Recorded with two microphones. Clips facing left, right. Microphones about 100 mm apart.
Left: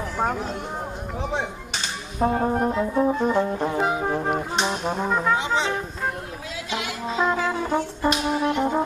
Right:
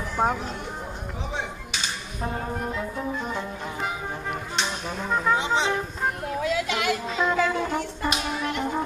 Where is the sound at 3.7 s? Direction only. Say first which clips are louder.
Left 8 dB; 35° left (ahead or behind).